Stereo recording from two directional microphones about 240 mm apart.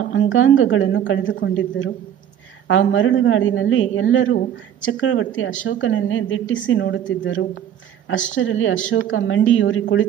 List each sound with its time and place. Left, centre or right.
0.1 s a woman's voice: left